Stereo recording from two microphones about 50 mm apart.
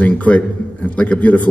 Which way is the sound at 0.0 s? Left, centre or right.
Left.